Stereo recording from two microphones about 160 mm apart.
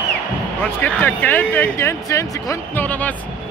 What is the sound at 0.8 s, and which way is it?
Speech, 10° left (ahead or behind).